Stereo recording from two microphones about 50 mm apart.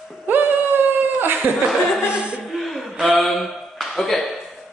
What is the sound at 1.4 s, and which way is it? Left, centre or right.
Speech, right.